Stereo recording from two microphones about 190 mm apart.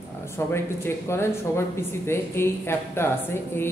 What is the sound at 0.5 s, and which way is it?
Speech, 15° left (ahead or behind).